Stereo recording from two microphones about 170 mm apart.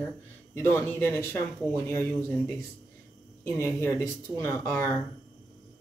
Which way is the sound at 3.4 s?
15° left (ahead or behind).